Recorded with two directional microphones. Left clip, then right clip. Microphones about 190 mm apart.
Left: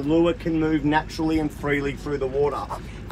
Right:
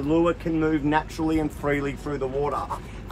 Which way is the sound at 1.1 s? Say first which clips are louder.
Left 1 dB; 30° right (ahead or behind).